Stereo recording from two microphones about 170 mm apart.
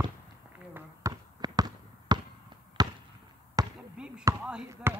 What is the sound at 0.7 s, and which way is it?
Basketball bounce, 20° right (ahead or behind).